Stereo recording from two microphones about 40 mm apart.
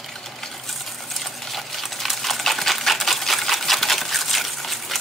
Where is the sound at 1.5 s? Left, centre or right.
Centre.